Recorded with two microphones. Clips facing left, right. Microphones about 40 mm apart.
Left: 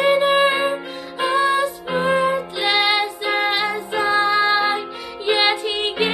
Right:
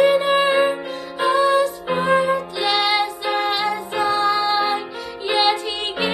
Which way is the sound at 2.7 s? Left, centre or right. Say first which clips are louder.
Left 1 dB; centre.